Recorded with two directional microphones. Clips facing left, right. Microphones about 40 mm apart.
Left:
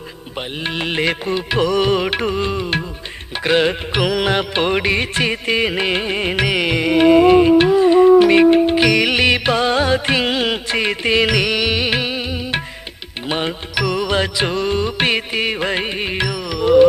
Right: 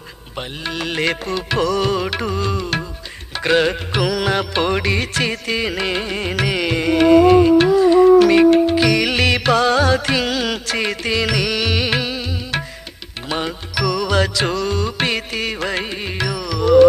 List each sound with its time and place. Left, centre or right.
0.7 s music: left
4.0 s music: left